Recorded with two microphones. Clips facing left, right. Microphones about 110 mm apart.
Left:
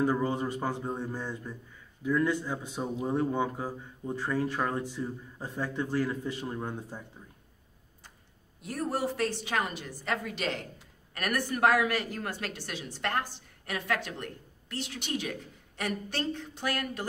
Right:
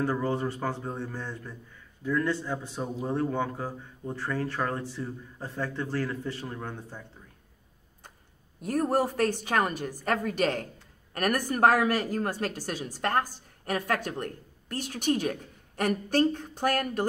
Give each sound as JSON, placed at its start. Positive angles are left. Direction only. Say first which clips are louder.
{"t": 0.0, "sound": "a man's voice", "louder": "even", "side_deg": 15}
{"t": 8.5, "sound": "a woman's voice", "louder": "right 6 dB", "side_deg": -45}